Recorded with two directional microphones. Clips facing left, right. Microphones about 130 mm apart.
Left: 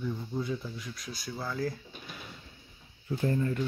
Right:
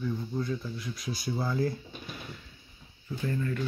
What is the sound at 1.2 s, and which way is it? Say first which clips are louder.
Speech: right 4 dB; 20° right (ahead or behind).